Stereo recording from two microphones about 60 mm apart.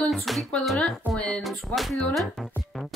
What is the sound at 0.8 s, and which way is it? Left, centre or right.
Speech, centre.